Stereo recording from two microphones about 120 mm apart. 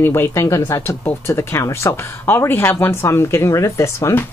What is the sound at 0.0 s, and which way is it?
Speech, 20° left (ahead or behind).